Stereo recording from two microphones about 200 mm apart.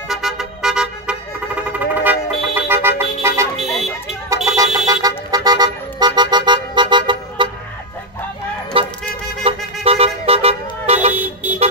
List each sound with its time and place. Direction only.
0.1 s vehicle: centre (ahead or behind)
3.6 s car alarm: centre (ahead or behind)
4.5 s vehicle horn: 15° right (ahead or behind)
4.8 s toot: 20° right (ahead or behind)
8.7 s vehicle: 25° right (ahead or behind)
11.1 s vehicle: 10° right (ahead or behind)